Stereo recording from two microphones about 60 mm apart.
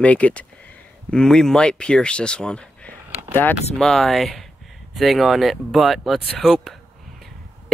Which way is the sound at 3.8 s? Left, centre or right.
Centre.